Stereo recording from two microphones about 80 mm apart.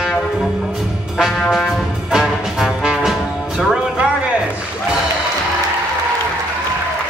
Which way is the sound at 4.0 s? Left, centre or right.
Centre.